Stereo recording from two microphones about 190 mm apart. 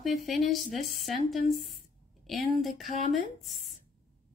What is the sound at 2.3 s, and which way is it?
Speech, centre (ahead or behind).